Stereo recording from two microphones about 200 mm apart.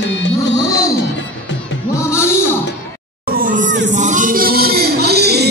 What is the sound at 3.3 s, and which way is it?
Hubbub, 40° right (ahead or behind).